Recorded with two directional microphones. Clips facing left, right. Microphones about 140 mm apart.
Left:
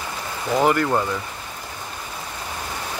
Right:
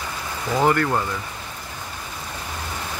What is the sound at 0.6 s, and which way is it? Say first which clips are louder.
Speech: even; 15° left (ahead or behind).